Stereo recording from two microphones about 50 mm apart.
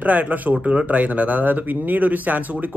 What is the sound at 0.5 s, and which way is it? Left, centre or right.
Speech, right.